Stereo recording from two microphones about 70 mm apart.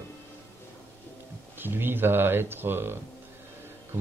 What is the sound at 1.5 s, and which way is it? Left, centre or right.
Speech, right.